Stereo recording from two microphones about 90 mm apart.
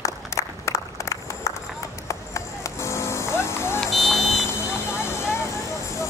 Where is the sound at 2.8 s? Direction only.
30° left (ahead or behind).